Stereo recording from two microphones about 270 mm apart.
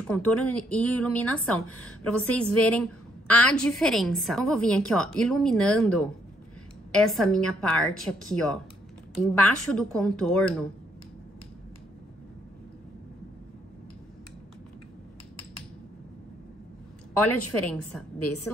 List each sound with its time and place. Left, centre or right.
0.0 s a woman's voice: centre
1.7 s a woman's voice: left
2.2 s a woman's voice: centre
17.2 s a woman's voice: left